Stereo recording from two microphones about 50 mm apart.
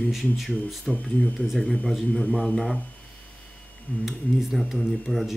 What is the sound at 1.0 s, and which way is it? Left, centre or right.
Speech, left.